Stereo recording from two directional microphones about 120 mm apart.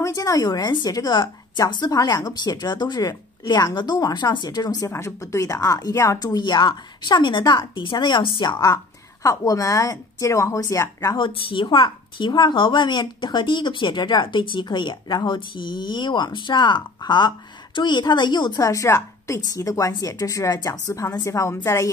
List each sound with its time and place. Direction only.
0.0 s a woman's voice: 30° left (ahead or behind)
11.1 s a woman's voice: 45° left (ahead or behind); by 21.9 s 25° left (ahead or behind)